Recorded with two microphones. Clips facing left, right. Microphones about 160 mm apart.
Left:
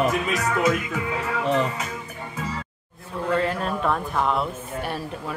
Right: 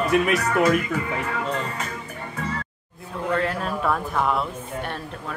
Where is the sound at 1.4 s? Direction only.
75° left (ahead or behind).